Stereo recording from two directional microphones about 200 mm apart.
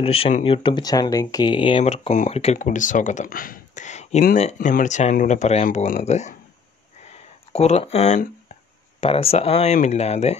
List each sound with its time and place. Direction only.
0.0 s speech: 30° left (ahead or behind)
7.5 s speech: 30° left (ahead or behind)